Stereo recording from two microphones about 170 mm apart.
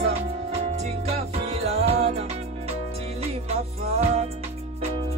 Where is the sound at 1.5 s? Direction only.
35° right (ahead or behind).